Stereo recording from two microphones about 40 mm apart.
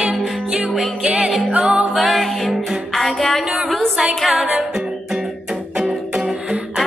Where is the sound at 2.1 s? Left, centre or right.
Centre.